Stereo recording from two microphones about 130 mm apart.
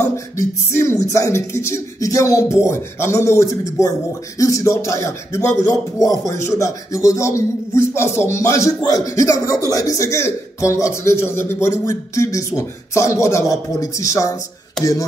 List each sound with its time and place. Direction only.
0.0 s speech: 20° left (ahead or behind)